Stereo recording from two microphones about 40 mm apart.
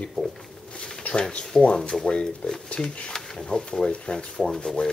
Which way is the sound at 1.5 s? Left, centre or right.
Centre.